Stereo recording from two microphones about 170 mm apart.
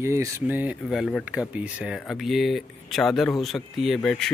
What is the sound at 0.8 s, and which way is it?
Speech, centre (ahead or behind).